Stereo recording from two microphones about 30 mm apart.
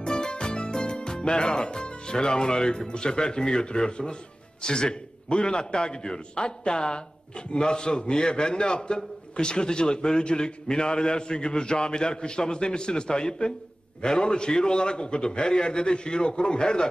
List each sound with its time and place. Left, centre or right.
0.0 s music: left
0.9 s a man's voice: left